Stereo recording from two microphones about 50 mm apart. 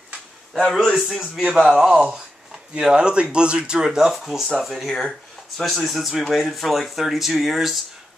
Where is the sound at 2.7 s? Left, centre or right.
Centre.